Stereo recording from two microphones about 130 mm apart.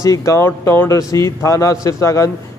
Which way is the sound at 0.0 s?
25° left (ahead or behind).